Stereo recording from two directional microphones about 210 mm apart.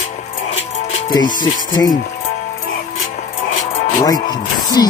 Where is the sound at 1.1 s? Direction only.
20° left (ahead or behind).